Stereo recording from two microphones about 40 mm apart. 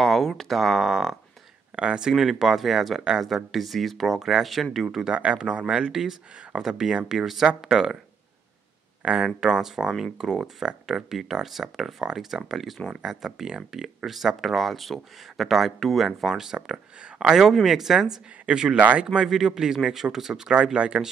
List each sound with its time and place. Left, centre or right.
0.0 s a sound: centre
0.3 s speech: centre
1.8 s a man's voice: right; by 4.6 s centre
5.1 s speech: right
5.4 s a man's voice: right
9.0 s a man's voice: right; by 12.9 s centre
13.0 s a man's voice: centre
13.7 s speech: centre
16.5 s a man's voice: right
18.8 s speech: right
19.2 s a man's voice: centre
20.5 s speech: right